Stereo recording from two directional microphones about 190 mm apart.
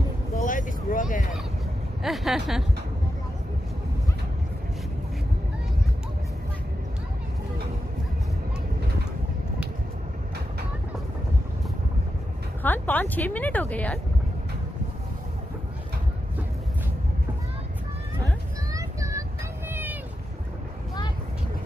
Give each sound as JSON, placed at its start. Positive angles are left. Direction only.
{"t": 0.4, "sound": "vehicle", "side_deg": 45}
{"t": 2.0, "sound": "speech", "side_deg": 0}
{"t": 12.6, "sound": "a sound", "side_deg": 10}
{"t": 18.7, "sound": "vehicle", "side_deg": -15}
{"t": 19.7, "sound": "boat", "side_deg": -10}